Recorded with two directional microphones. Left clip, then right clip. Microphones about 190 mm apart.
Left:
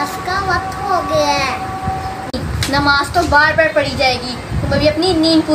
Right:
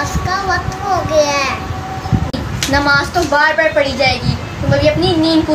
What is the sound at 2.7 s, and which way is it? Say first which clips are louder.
Speech: right 1 dB; 10° right (ahead or behind).